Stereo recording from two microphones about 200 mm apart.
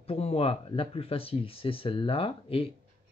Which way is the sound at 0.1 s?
30° left (ahead or behind).